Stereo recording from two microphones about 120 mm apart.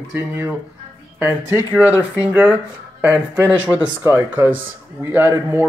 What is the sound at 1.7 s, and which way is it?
Speech, 15° right (ahead or behind).